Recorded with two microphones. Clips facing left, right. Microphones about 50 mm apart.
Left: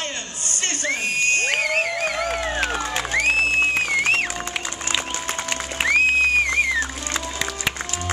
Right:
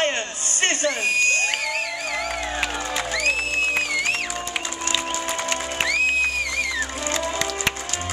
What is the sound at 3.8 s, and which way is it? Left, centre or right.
Music, left.